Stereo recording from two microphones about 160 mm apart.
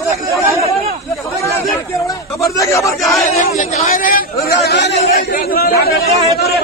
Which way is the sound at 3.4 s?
50° left (ahead or behind).